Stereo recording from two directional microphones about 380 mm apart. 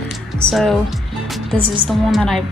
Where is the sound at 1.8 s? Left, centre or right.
Centre.